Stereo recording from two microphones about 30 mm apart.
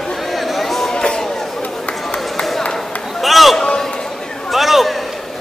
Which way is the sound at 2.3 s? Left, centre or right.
Centre.